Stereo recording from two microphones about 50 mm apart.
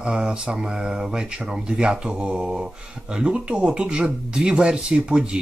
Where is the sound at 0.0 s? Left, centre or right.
Centre.